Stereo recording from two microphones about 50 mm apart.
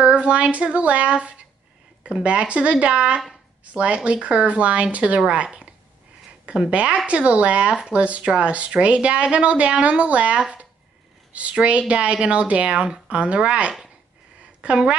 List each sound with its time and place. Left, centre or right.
0.0 s a woman's voice: right